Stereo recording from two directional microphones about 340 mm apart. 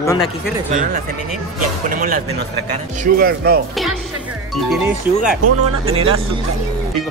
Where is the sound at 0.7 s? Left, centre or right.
Right.